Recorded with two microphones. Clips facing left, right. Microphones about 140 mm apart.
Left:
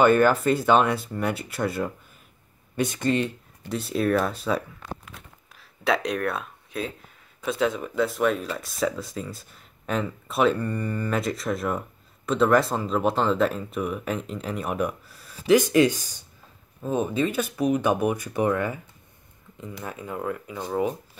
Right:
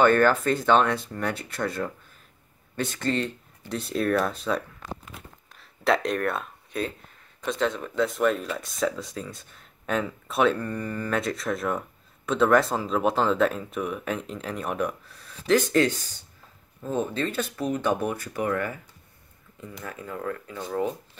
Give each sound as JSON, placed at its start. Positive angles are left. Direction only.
{"t": 0.0, "sound": "speech", "side_deg": 10}
{"t": 19.8, "sound": "speech", "side_deg": 20}